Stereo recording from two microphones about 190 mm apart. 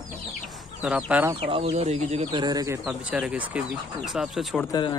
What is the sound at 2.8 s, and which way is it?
Speech, 5° right (ahead or behind).